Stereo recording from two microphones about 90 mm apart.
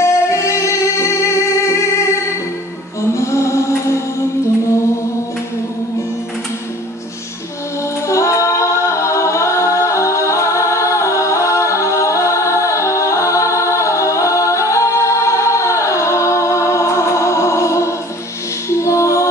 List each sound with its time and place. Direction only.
0.0 s music: 30° left (ahead or behind)
8.1 s a capella: 35° left (ahead or behind)
18.7 s music: 35° left (ahead or behind)